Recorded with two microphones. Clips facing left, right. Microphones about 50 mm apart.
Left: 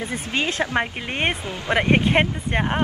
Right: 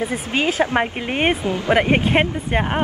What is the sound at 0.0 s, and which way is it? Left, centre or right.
A woman's voice, centre.